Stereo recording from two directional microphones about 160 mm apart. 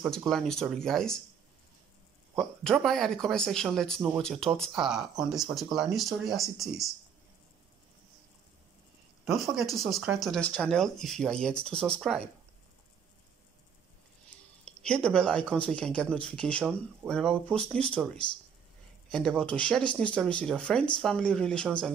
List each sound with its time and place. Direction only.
0.3 s speech: 5° left (ahead or behind)
2.3 s speech: 5° left (ahead or behind)
9.3 s speech: centre (ahead or behind)
14.8 s speech: 5° left (ahead or behind)